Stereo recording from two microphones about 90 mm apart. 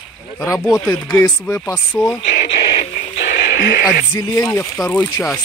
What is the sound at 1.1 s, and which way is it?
Speech, 25° left (ahead or behind).